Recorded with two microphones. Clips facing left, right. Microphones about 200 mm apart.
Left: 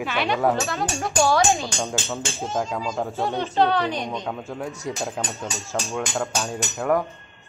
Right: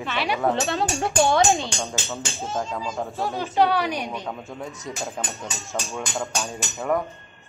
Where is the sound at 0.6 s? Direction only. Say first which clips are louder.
Right 2 dB; 30° right (ahead or behind).